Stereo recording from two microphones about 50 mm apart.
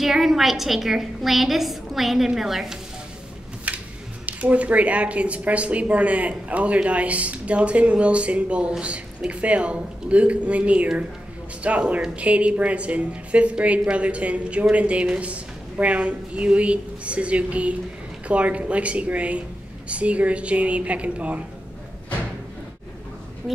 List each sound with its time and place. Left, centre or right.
0.0 s a woman's voice: centre
3.7 s a sound: right
4.3 s a woman's voice: right